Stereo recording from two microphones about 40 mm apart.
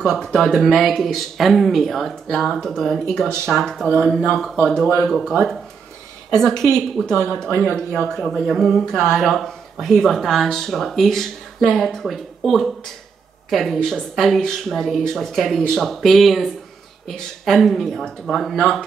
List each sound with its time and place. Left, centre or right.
0.0 s speech: centre
3.4 s speech: centre
4.0 s speech: centre
7.2 s speech: right
8.2 s speech: centre
9.2 s speech: centre